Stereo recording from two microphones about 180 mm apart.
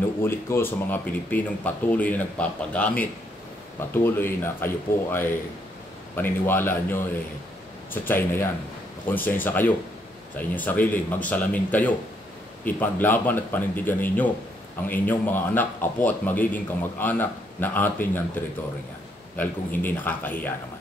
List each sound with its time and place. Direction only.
0.2 s a man's voice: 15° left (ahead or behind)